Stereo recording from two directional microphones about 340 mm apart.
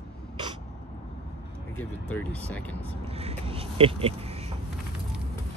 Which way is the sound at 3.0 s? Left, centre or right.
Centre.